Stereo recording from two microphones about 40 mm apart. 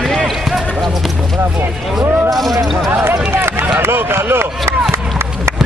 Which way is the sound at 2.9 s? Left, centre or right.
Right.